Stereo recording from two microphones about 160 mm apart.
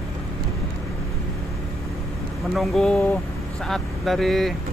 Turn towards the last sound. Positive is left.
turn(degrees=0)  # may be behind; listen again after turning